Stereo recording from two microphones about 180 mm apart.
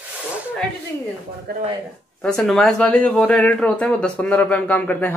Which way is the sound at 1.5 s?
60° right (ahead or behind).